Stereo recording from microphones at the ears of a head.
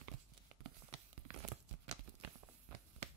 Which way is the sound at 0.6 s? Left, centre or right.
Right.